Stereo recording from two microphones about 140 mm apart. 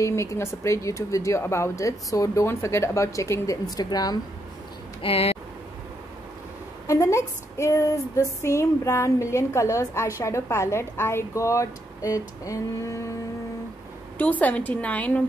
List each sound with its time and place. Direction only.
0.0 s female singing: 20° left (ahead or behind)
5.0 s speech: 45° left (ahead or behind)
6.9 s female singing: 20° left (ahead or behind)
14.1 s a woman's voice: 10° left (ahead or behind)